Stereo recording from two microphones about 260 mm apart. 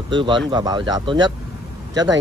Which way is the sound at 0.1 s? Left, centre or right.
Centre.